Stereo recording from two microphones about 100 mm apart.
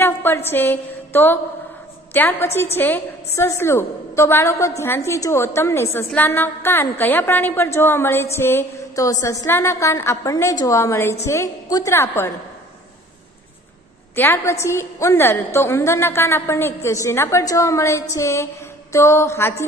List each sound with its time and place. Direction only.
0.0 s a woman's voice: 20° left (ahead or behind)
8.9 s a woman's voice: 35° left (ahead or behind)
14.1 s a woman's voice: 20° left (ahead or behind)